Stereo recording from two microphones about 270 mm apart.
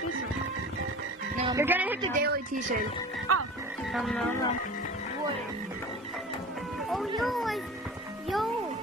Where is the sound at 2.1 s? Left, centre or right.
Right.